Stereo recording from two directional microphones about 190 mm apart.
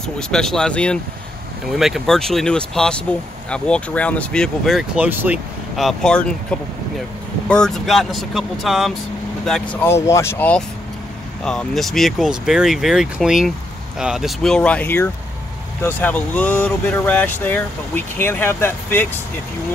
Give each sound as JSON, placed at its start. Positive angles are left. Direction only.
{"t": 0.0, "sound": "speech", "side_deg": 5}
{"t": 7.4, "sound": "speech", "side_deg": 5}